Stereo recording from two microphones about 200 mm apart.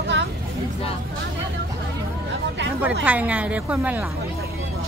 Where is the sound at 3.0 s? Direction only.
5° right (ahead or behind).